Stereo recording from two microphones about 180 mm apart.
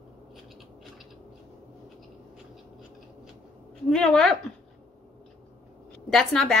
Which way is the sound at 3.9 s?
5° left (ahead or behind).